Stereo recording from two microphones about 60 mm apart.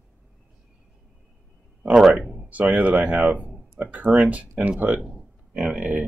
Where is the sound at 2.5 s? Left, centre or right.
Right.